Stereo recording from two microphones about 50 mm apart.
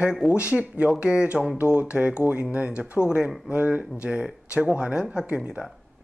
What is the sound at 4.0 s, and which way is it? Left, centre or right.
Speech, centre.